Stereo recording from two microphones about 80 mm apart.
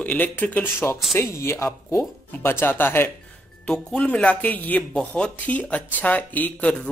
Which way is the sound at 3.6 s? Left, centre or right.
Centre.